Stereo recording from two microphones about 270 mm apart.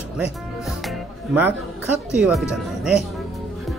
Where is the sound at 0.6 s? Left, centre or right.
Centre.